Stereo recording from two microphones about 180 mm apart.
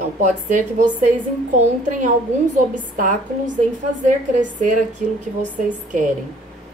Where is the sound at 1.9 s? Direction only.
45° right (ahead or behind).